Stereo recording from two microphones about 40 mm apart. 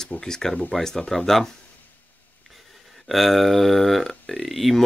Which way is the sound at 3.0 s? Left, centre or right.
Centre.